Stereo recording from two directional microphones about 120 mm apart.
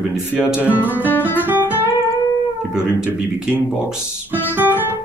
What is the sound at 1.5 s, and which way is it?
Music, 15° right (ahead or behind).